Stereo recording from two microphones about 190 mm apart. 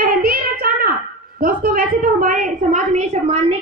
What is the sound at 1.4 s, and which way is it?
A woman's voice, 50° right (ahead or behind).